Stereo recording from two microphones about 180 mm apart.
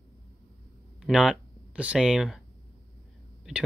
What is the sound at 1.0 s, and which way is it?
Speech, 5° right (ahead or behind).